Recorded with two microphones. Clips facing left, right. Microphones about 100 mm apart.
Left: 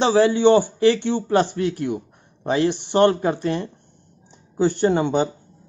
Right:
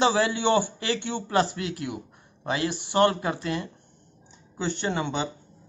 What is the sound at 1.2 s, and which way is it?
A man's voice, 35° left (ahead or behind).